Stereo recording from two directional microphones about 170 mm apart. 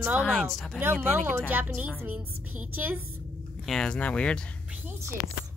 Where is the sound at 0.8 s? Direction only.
10° right (ahead or behind).